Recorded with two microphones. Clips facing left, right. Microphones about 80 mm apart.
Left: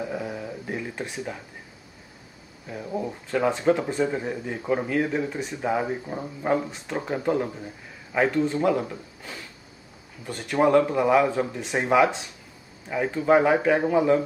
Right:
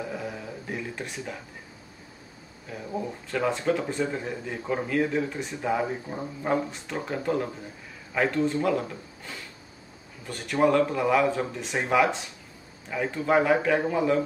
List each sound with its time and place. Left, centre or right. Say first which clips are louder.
0.1 s a sound: left 3 dB; centre
3.3 s speech: left 4 dB; centre
6.1 s speech: left 2 dB; centre
6.9 s speech: left 4 dB; centre